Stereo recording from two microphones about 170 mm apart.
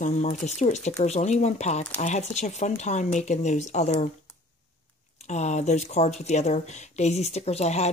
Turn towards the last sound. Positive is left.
turn(degrees=40)  # may be behind; listen again after turning